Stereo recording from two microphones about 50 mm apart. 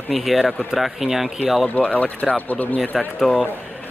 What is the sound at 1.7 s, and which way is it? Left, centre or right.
Speech, left.